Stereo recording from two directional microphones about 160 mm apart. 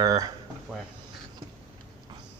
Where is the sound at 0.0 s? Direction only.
20° right (ahead or behind).